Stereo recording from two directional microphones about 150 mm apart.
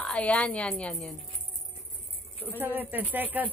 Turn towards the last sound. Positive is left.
turn(degrees=-10)  # may be behind; listen again after turning